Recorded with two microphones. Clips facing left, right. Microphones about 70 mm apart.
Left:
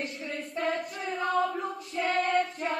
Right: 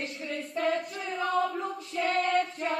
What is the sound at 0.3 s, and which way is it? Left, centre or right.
Child singing, left.